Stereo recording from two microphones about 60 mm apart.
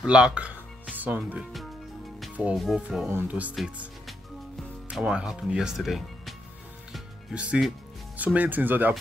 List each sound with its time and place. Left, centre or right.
0.0 s speech: centre
2.5 s speech: centre
3.1 s speech: right
3.6 s speech: centre
5.0 s speech: centre
7.3 s speech: right